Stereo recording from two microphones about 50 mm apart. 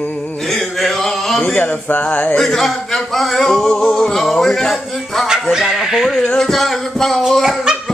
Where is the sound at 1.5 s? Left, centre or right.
Left.